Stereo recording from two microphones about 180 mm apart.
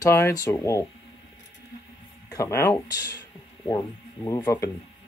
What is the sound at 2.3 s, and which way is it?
Speech, 15° left (ahead or behind).